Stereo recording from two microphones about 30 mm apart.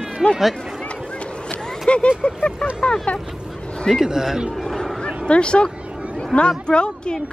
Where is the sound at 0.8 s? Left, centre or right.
Left.